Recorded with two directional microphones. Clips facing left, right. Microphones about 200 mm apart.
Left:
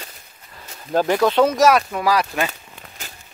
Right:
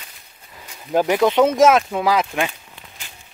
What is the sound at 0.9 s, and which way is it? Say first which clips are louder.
Speech: right 1 dB; 15° right (ahead or behind).